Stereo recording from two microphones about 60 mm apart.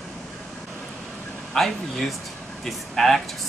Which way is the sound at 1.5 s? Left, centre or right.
Centre.